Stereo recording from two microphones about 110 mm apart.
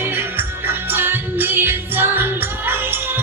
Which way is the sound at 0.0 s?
20° right (ahead or behind).